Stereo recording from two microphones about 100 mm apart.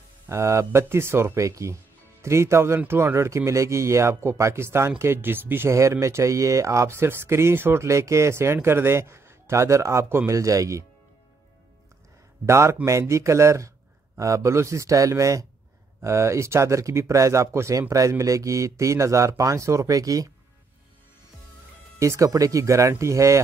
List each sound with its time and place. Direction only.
0.3 s a man's voice: 30° right (ahead or behind)
12.4 s speech: 30° right (ahead or behind)
21.9 s speech: 30° right (ahead or behind)